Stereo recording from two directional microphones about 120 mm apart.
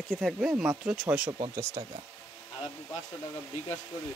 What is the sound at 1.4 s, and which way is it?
Speech, 25° right (ahead or behind).